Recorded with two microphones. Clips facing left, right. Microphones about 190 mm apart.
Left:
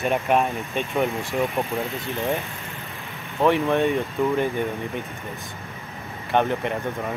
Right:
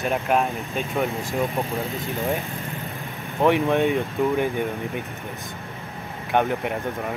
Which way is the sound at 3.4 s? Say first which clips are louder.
Even; 15° right (ahead or behind).